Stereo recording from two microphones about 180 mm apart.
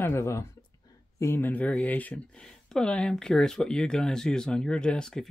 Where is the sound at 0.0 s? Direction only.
15° left (ahead or behind).